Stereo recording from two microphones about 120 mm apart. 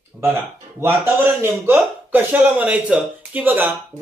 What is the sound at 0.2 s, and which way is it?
A man's voice, 20° right (ahead or behind).